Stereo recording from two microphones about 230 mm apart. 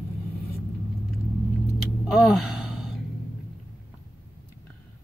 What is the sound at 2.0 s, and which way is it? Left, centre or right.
Gasp, centre.